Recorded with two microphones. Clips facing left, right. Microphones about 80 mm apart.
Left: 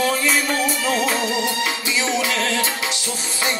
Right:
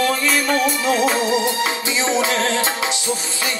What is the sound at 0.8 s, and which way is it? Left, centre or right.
Music, centre.